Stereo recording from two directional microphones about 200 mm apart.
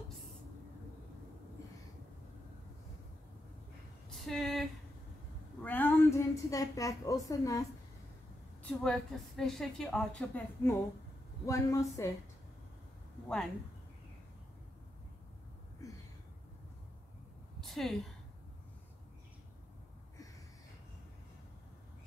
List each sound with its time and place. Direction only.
4.3 s a woman's voice: centre (ahead or behind)
8.6 s a woman's voice: 5° left (ahead or behind)
17.6 s a sound: centre (ahead or behind)